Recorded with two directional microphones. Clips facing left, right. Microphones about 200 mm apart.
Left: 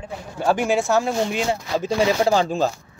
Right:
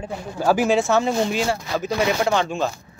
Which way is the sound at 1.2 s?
15° left (ahead or behind).